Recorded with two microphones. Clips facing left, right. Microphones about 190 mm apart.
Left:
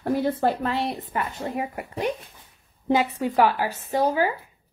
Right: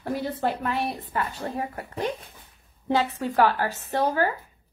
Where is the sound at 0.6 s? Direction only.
25° left (ahead or behind).